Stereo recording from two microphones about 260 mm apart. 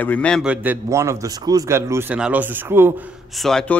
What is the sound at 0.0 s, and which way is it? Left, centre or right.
A man's voice, centre.